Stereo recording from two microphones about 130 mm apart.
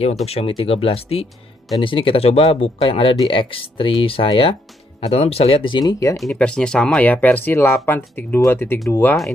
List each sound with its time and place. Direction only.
0.0 s speech: 55° left (ahead or behind); by 6.1 s 30° left (ahead or behind)
6.1 s speech: 5° left (ahead or behind); by 9.2 s 20° left (ahead or behind)